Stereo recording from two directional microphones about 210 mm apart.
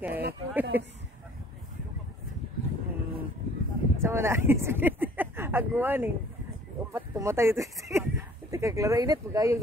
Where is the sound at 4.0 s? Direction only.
10° right (ahead or behind).